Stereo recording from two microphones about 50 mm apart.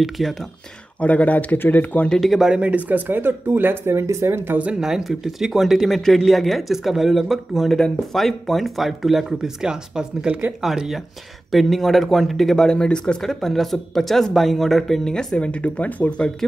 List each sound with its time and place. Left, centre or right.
0.0 s speech: centre
0.9 s speech: left
2.1 s speech: centre
2.5 s speech: right
2.9 s speech: right
4.0 s speech: right
4.6 s speech: right
4.8 s speech: centre
10.6 s speech: centre
15.0 s speech: centre